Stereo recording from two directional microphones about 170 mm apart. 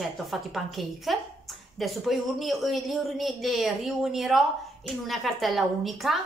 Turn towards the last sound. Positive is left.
turn(degrees=0)  # may be behind; listen again after turning